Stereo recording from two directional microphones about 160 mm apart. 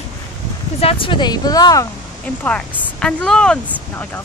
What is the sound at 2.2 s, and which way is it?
Speech, 5° left (ahead or behind).